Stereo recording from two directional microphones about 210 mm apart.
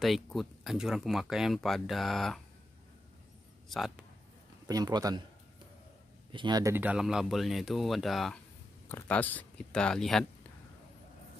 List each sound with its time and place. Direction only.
0.0 s speech: centre (ahead or behind)
3.6 s speech: centre (ahead or behind)
4.6 s a man's voice: 20° right (ahead or behind)
6.3 s speech: 20° right (ahead or behind); by 10.2 s centre (ahead or behind)